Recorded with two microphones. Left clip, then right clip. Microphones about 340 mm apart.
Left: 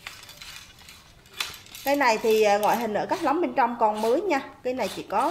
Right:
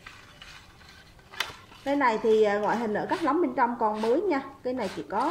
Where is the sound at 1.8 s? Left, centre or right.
Centre.